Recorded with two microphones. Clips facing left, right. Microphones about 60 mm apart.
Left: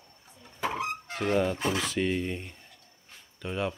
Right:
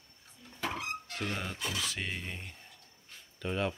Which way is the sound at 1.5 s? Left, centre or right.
Left.